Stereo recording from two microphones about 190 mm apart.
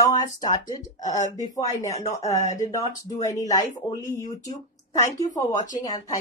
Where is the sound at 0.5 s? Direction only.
20° left (ahead or behind).